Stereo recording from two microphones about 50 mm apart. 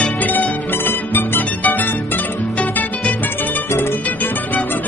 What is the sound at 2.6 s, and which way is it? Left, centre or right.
Music, left.